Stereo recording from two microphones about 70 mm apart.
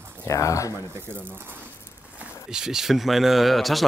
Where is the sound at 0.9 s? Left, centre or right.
Right.